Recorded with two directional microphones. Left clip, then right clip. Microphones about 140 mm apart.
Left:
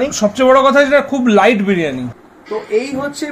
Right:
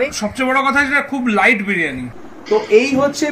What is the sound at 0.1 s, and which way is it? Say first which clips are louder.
A man's voice: left 7 dB; 80° left.